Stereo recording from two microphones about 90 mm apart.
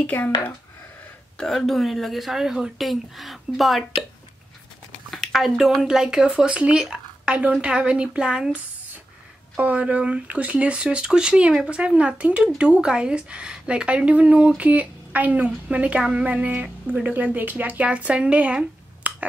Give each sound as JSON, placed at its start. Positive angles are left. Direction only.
{"t": 0.0, "sound": "speech", "side_deg": 20}
{"t": 1.4, "sound": "speech", "side_deg": 5}
{"t": 5.1, "sound": "speech", "side_deg": 0}
{"t": 9.6, "sound": "speech", "side_deg": -15}